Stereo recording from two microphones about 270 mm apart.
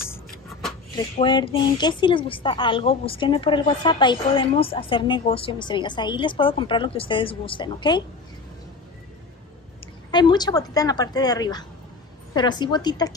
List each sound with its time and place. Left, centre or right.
0.0 s vehicle: centre
0.9 s a woman's voice: centre
10.1 s a woman's voice: centre